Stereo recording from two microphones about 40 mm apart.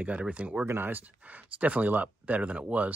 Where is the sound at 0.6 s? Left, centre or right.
Right.